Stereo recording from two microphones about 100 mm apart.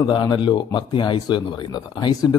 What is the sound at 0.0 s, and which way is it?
A man's voice, 45° left (ahead or behind).